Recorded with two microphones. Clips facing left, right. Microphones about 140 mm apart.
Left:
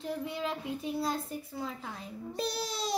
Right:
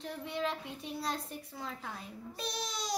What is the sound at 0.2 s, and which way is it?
A child's voice, 5° left (ahead or behind).